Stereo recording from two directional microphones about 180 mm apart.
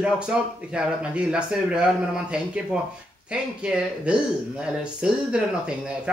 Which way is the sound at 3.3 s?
5° right (ahead or behind).